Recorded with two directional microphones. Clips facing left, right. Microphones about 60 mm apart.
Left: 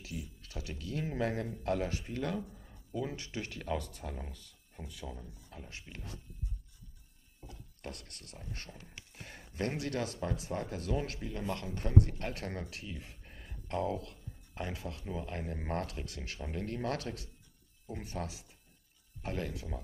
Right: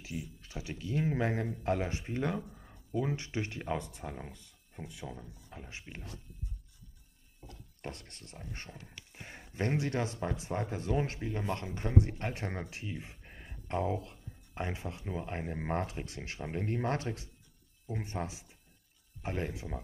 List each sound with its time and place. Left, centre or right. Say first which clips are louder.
0.0 s speech: right 2 dB; right
7.8 s speech: right 2 dB; right